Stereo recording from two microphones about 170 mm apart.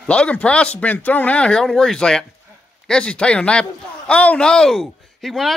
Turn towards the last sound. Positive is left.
turn(degrees=0)  # may be behind; listen again after turning